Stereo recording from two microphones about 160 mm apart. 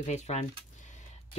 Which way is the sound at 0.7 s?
50° left (ahead or behind).